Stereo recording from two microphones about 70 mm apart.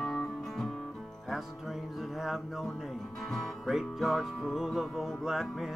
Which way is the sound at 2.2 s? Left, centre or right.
Centre.